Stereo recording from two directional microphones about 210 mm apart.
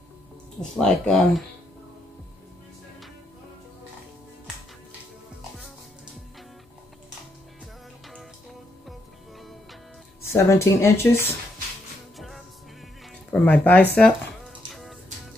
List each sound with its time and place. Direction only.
0.6 s speech: 5° left (ahead or behind)
10.2 s speech: 10° left (ahead or behind)
12.2 s music: centre (ahead or behind)
13.3 s speech: 5° left (ahead or behind)
14.7 s music: centre (ahead or behind)